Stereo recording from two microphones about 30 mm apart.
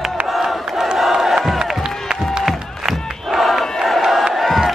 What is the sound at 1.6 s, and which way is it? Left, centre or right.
Music, right.